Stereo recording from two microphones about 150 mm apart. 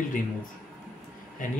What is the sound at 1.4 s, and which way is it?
Speech, 60° left (ahead or behind).